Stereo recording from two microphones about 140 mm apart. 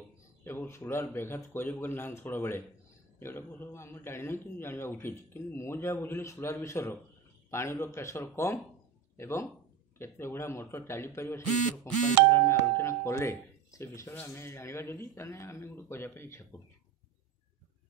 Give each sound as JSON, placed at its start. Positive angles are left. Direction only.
{"t": 0.4, "sound": "a man's voice", "side_deg": 15}